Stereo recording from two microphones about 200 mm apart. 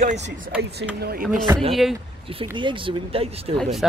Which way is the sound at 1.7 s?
Centre (ahead or behind).